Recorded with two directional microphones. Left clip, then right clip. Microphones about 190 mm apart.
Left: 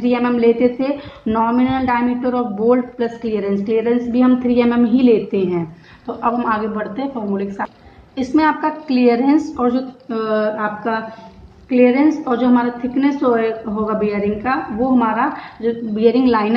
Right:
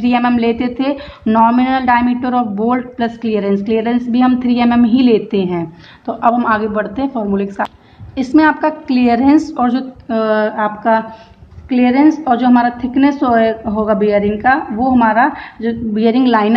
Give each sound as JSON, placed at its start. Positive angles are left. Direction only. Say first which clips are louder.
{"t": 0.0, "sound": "speech", "louder": "right 1 dB", "side_deg": -50}